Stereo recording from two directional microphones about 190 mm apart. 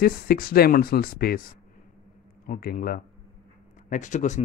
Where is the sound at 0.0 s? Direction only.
50° left (ahead or behind).